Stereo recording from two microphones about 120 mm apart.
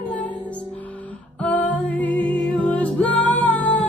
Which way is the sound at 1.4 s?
15° left (ahead or behind).